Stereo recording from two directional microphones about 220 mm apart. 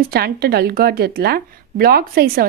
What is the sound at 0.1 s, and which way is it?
Speech, 45° right (ahead or behind).